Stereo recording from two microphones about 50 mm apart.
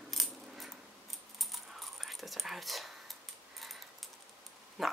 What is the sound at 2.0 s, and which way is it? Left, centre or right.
Whispering, centre.